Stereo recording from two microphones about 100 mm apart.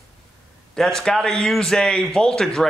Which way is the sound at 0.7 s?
5° left (ahead or behind).